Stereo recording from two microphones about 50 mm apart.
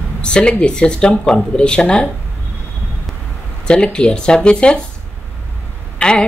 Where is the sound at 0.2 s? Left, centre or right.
Centre.